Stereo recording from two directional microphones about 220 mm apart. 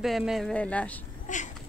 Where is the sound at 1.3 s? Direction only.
35° left (ahead or behind).